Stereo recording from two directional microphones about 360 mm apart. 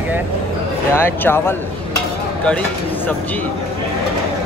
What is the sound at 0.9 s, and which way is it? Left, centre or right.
Speech, centre.